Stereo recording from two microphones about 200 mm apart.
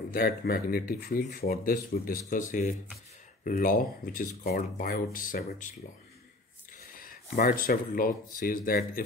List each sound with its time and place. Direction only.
0.1 s speech: 50° left (ahead or behind)
3.4 s speech: 45° left (ahead or behind)
7.0 s speech: 45° left (ahead or behind)